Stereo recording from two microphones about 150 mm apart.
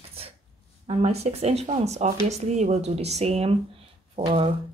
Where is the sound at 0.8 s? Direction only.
45° right (ahead or behind).